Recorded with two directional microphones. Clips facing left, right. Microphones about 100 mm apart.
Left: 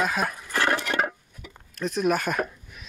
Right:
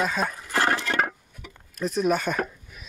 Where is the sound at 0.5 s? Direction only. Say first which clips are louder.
Right 1 dB; 30° right (ahead or behind).